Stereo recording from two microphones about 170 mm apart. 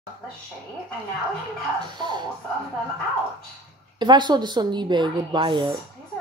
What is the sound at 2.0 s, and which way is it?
Speech, 25° right (ahead or behind).